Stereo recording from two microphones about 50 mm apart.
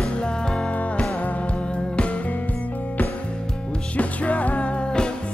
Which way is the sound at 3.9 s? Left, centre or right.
Left.